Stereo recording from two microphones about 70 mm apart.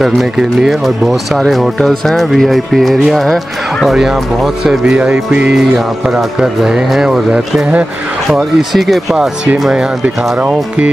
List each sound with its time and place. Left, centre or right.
0.0 s speech: centre
8.3 s speech: centre